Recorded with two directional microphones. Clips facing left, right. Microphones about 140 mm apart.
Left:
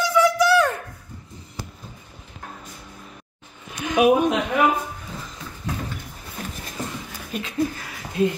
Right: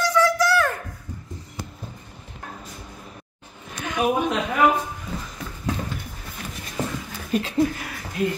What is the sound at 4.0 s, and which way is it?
Speech, 75° left (ahead or behind).